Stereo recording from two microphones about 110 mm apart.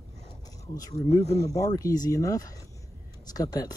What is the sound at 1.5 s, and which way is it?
Speech, 30° left (ahead or behind).